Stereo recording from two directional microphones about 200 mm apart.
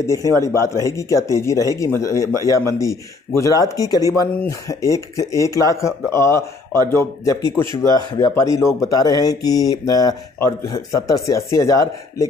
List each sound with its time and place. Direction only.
0.0 s speech: 15° left (ahead or behind)